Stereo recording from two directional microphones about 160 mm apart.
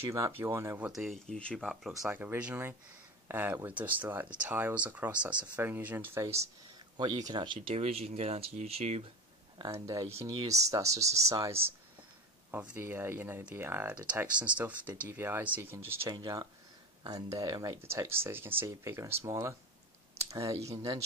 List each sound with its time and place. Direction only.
0.0 s speech: 15° right (ahead or behind)
7.6 s speech: 40° right (ahead or behind)
9.6 s speech: 25° right (ahead or behind)
12.7 s speech: 15° right (ahead or behind)
16.1 s speech: 25° right (ahead or behind)